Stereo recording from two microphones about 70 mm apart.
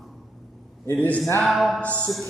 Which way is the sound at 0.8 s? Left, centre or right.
Left.